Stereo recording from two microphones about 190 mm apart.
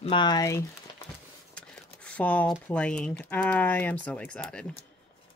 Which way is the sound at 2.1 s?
5° left (ahead or behind).